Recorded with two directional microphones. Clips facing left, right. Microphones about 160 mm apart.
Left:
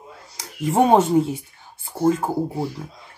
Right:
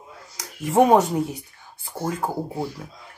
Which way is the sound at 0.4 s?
25° left (ahead or behind).